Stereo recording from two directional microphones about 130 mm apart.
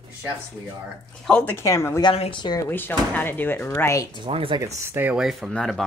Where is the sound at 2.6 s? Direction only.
15° left (ahead or behind).